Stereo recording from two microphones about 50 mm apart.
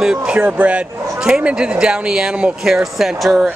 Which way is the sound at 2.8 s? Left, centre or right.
Centre.